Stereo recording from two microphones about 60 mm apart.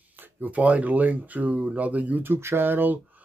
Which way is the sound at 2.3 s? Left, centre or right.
Right.